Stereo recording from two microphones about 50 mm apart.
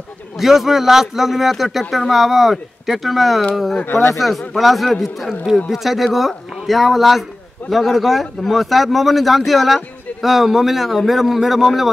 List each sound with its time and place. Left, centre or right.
0.4 s speech: centre
3.8 s speech: left
4.2 s speech: centre